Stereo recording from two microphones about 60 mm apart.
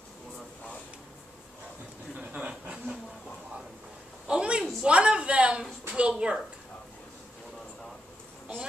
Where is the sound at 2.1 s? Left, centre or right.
Centre.